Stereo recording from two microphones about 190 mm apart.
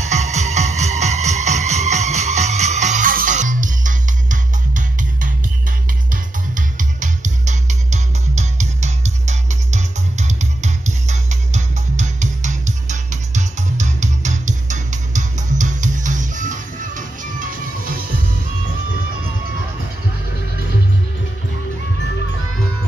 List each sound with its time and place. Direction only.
0.0 s music: 35° right (ahead or behind)
6.5 s music: 40° right (ahead or behind)